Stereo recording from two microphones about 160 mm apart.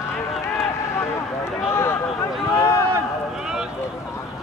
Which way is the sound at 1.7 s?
15° left (ahead or behind).